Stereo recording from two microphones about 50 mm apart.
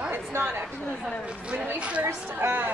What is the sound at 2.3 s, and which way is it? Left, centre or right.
Speech, right.